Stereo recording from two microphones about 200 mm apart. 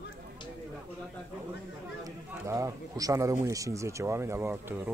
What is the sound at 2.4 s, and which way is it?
Speech, 15° right (ahead or behind).